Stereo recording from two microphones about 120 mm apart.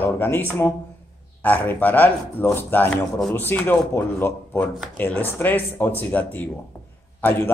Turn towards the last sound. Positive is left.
turn(degrees=15)  # may be behind; listen again after turning